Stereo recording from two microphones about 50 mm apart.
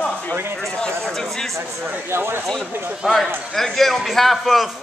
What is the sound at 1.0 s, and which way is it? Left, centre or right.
Speech, centre.